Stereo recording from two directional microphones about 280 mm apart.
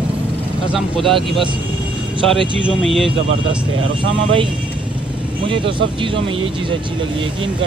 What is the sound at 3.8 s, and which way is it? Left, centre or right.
Speech, right.